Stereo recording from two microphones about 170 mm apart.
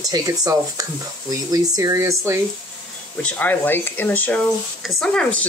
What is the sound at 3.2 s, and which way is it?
Speech, 10° left (ahead or behind).